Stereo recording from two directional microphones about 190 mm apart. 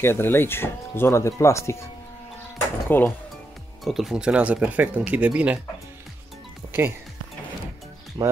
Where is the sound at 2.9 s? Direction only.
10° left (ahead or behind).